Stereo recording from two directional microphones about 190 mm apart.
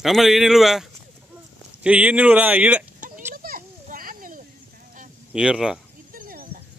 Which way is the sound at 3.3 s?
50° right (ahead or behind).